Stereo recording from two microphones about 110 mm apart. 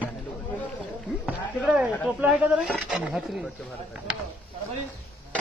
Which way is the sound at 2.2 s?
10° right (ahead or behind).